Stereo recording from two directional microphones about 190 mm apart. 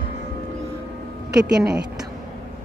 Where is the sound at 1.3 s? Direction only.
5° right (ahead or behind).